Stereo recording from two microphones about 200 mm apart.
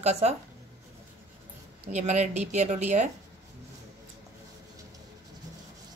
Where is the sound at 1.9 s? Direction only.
35° right (ahead or behind).